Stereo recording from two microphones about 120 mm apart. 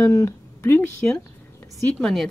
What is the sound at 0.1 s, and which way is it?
Speech, 20° left (ahead or behind).